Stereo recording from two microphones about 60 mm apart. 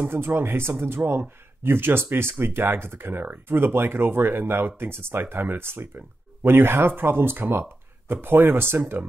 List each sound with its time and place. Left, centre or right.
0.0 s speech: right